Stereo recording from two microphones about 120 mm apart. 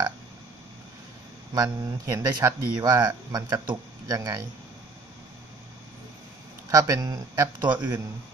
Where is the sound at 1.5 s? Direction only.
35° right (ahead or behind).